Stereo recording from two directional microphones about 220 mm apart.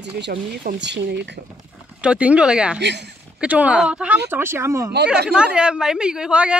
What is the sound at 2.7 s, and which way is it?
Speech, 50° right (ahead or behind).